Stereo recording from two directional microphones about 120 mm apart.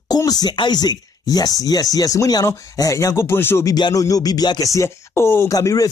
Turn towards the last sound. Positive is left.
turn(degrees=30)  # may be behind; listen again after turning